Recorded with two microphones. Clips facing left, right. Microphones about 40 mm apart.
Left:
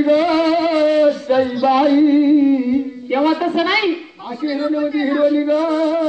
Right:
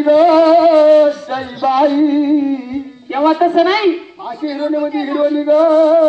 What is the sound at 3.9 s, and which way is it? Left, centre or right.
A man's voice, centre.